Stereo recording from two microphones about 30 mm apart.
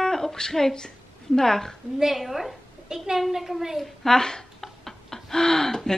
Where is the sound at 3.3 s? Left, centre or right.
Centre.